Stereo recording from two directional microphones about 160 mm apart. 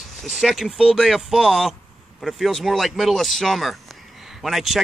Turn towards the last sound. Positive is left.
turn(degrees=0)  # may be behind; listen again after turning